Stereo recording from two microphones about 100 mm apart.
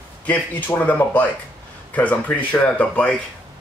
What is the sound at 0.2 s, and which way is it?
Speech, 15° left (ahead or behind).